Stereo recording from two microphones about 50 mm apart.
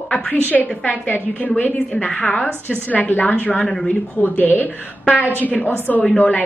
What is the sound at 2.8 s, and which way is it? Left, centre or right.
A woman's voice, left.